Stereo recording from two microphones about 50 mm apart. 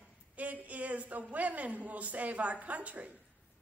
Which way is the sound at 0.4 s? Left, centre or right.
Right.